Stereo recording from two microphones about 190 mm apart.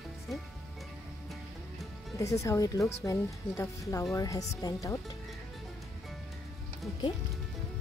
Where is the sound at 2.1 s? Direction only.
15° left (ahead or behind).